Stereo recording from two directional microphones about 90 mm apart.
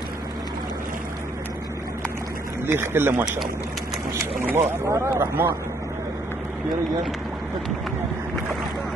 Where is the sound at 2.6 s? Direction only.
25° right (ahead or behind).